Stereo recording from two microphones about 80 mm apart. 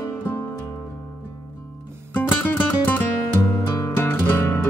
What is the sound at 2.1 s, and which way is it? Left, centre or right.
Music, left.